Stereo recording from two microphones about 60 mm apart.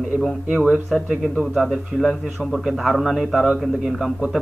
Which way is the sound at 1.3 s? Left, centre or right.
Centre.